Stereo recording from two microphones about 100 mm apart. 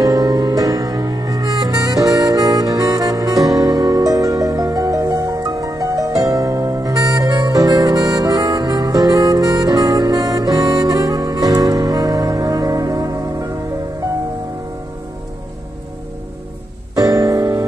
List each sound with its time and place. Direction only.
0.0 s music: 40° right (ahead or behind)
16.9 s music: 40° right (ahead or behind)